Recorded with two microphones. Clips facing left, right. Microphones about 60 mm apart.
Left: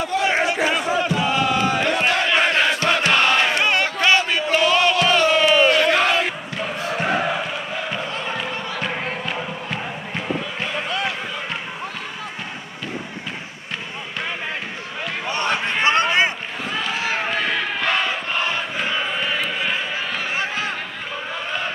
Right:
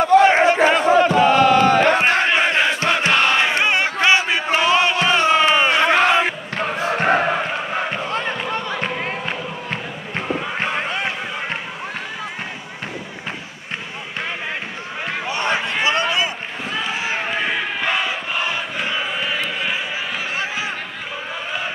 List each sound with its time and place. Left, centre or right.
0.0 s battle cry: right
2.0 s battle cry: right
2.3 s crowd: centre
3.1 s battle cry: centre
6.5 s basketball bounce: right
10.6 s a sound: right
15.8 s a sound: left
16.8 s run: centre
17.3 s crowd: centre